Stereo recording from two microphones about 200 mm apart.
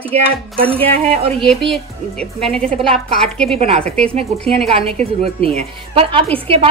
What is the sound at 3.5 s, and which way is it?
Speech, 30° right (ahead or behind).